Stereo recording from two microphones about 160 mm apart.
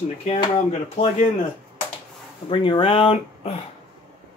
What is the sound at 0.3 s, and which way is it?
Speech, 40° left (ahead or behind).